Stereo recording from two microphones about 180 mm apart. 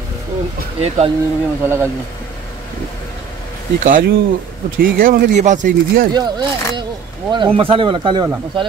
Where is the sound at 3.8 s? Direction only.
50° right (ahead or behind).